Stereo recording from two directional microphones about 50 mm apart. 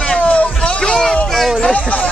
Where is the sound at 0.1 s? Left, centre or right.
Left.